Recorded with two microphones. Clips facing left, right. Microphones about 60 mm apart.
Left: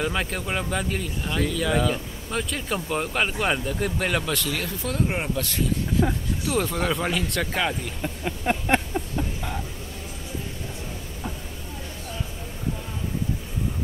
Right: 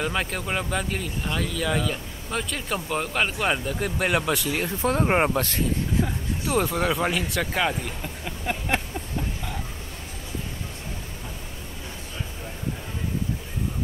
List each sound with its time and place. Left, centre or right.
0.0 s speech: centre
4.8 s speech: right
6.0 s speech: left
6.5 s speech: centre
8.0 s a sound: centre